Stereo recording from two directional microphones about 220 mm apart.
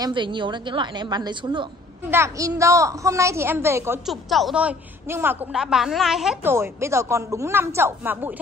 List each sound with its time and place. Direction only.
0.0 s a woman's voice: 20° right (ahead or behind)
4.1 s a woman's voice: centre (ahead or behind)